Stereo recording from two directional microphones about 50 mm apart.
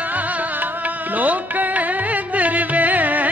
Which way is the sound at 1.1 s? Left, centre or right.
Right.